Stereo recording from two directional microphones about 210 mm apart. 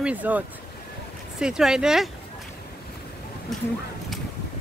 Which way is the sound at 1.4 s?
5° right (ahead or behind).